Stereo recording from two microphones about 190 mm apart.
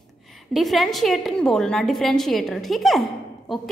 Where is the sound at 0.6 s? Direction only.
Centre (ahead or behind).